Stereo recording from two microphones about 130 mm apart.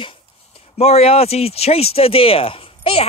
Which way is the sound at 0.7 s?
50° left (ahead or behind).